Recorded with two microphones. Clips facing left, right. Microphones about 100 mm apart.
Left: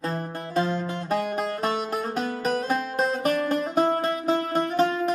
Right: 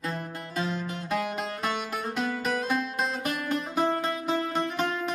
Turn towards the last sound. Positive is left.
turn(degrees=35)  # may be behind; listen again after turning